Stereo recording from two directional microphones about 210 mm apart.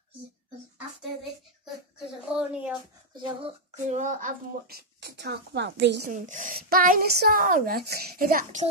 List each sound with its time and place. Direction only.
2.0 s a sound: 5° right (ahead or behind)
3.2 s speech: 30° right (ahead or behind); by 6.0 s 55° right (ahead or behind)
6.0 s speech: 35° right (ahead or behind)